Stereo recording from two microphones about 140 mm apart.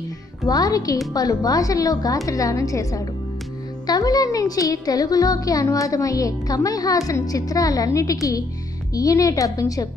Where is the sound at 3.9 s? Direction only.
30° left (ahead or behind).